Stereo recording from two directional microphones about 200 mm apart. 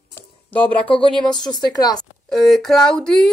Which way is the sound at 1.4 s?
20° left (ahead or behind).